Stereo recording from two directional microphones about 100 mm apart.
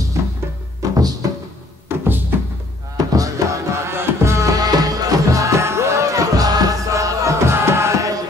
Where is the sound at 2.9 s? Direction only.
35° right (ahead or behind).